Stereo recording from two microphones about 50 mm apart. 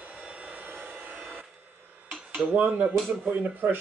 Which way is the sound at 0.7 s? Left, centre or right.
Right.